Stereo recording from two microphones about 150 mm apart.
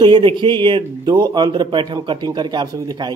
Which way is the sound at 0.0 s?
30° right (ahead or behind).